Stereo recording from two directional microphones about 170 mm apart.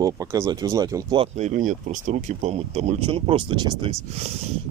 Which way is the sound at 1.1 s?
45° right (ahead or behind).